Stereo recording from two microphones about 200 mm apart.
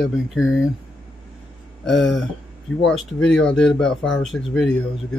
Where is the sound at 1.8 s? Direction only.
Centre (ahead or behind).